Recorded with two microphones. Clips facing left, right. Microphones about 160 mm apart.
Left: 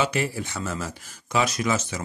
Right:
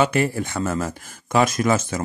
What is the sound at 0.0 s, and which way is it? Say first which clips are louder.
Speech: right 5 dB; 50° right (ahead or behind).